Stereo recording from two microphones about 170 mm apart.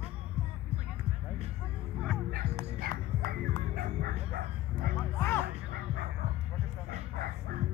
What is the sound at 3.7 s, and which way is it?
Music, 60° right (ahead or behind).